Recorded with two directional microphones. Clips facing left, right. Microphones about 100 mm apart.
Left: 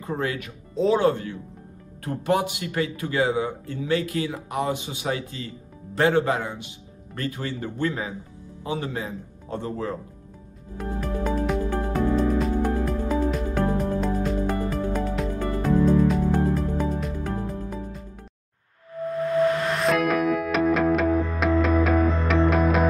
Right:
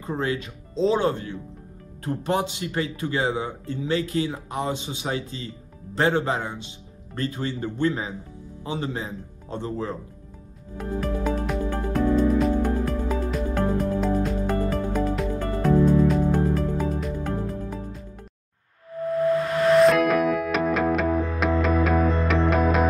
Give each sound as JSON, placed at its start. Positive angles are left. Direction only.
{"t": 0.0, "sound": "a man's voice", "side_deg": -25}
{"t": 10.8, "sound": "music", "side_deg": 0}
{"t": 19.7, "sound": "music", "side_deg": 0}